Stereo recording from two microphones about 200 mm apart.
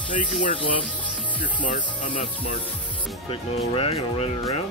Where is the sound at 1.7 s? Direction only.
40° left (ahead or behind).